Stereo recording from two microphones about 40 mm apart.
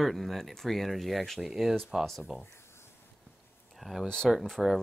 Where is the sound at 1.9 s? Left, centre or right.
Centre.